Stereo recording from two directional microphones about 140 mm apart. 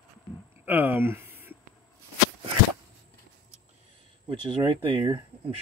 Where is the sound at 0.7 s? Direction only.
15° right (ahead or behind).